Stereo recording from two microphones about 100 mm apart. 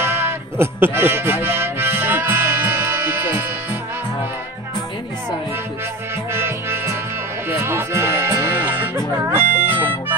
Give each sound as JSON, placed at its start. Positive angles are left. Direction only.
{"t": 0.0, "sound": "music", "side_deg": -25}
{"t": 6.3, "sound": "music", "side_deg": -25}